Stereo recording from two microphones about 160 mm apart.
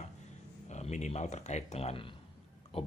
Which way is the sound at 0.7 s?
45° left (ahead or behind).